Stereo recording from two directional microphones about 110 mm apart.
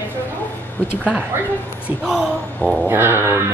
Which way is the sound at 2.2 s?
5° left (ahead or behind).